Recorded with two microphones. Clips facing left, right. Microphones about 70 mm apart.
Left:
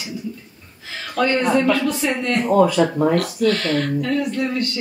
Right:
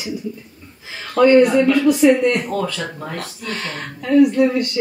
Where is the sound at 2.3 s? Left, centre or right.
Centre.